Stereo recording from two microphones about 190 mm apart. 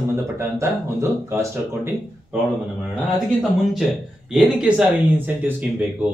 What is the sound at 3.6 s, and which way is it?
Speech, centre (ahead or behind).